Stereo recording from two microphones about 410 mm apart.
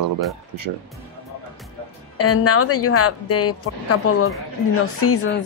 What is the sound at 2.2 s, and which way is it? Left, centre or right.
A woman's voice, left.